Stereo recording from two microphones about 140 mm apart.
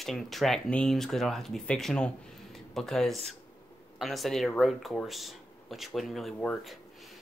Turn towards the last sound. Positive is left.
turn(degrees=5)  # may be behind; listen again after turning